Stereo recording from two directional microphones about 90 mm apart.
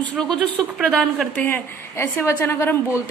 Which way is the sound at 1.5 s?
25° left (ahead or behind).